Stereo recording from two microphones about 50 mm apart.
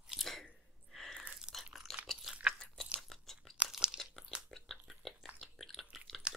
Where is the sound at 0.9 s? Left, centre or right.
Centre.